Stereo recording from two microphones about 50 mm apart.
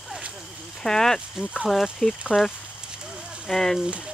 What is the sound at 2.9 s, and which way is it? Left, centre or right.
Horse, centre.